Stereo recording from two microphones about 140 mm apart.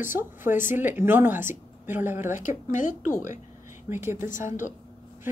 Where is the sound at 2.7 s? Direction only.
65° left (ahead or behind).